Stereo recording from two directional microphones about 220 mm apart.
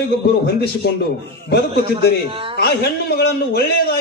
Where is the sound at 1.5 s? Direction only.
45° left (ahead or behind).